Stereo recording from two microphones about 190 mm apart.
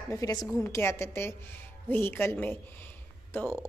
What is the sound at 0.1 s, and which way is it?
A woman's voice, 20° left (ahead or behind).